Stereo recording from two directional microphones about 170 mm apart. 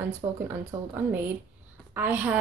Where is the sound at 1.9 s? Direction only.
10° right (ahead or behind).